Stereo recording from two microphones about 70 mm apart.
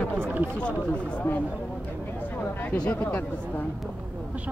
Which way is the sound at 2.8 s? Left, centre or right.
Centre.